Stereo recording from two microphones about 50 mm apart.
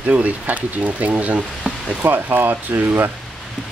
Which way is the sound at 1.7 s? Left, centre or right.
Right.